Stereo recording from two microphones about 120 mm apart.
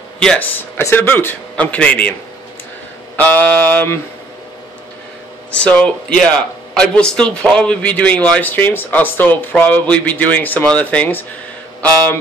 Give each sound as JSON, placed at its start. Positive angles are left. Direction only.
{"t": 0.2, "sound": "speech", "side_deg": 5}
{"t": 0.6, "sound": "a man's voice", "side_deg": 20}
{"t": 3.2, "sound": "a man's voice", "side_deg": 15}
{"t": 5.5, "sound": "a man's voice", "side_deg": 10}